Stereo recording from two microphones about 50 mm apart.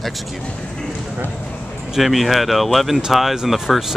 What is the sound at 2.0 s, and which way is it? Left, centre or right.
Speech, centre.